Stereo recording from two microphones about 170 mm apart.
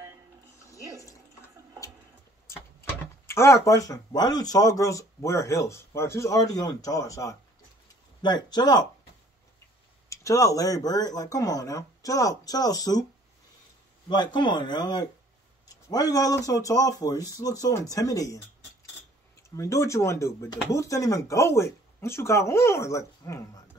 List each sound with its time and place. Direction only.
3.3 s speech: 15° left (ahead or behind)
10.0 s speech: 20° left (ahead or behind)
14.0 s speech: 25° left (ahead or behind)
19.5 s speech: 15° left (ahead or behind)